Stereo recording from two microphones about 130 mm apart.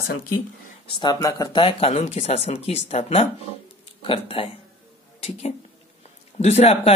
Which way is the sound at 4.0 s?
45° left (ahead or behind).